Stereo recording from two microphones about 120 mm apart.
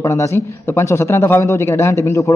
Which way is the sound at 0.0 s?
25° left (ahead or behind).